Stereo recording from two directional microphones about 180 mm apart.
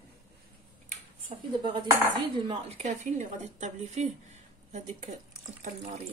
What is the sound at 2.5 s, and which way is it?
Speech, 40° right (ahead or behind).